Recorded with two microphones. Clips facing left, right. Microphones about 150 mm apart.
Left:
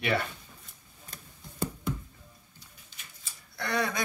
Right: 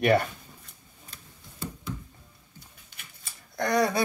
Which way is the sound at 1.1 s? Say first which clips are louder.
Left 4 dB; 50° left (ahead or behind).